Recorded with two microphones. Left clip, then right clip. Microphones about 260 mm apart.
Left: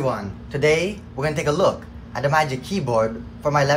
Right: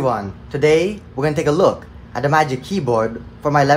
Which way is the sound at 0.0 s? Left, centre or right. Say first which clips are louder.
Right 5 dB; centre.